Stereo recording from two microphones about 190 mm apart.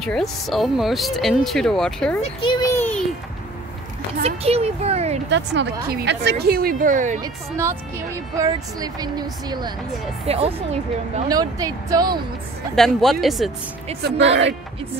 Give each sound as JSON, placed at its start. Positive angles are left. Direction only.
{"t": 0.0, "sound": "speech", "side_deg": 0}
{"t": 2.2, "sound": "a sound", "side_deg": 25}
{"t": 4.2, "sound": "speech", "side_deg": -30}
{"t": 5.3, "sound": "a woman's voice", "side_deg": -65}
{"t": 7.2, "sound": "speech", "side_deg": -15}
{"t": 10.2, "sound": "speech", "side_deg": -30}
{"t": 11.2, "sound": "speech", "side_deg": -20}
{"t": 12.7, "sound": "speech", "side_deg": 0}
{"t": 14.0, "sound": "speech", "side_deg": -70}